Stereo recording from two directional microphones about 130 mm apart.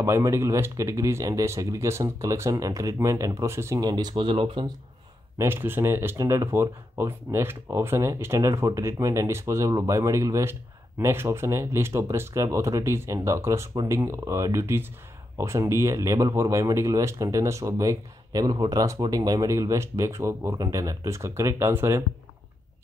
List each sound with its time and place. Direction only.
0.0 s speech: 20° right (ahead or behind)
3.8 s speech: 35° right (ahead or behind)
5.4 s speech: 15° right (ahead or behind)